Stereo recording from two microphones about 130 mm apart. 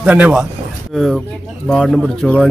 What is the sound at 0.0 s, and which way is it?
Speech, 10° right (ahead or behind).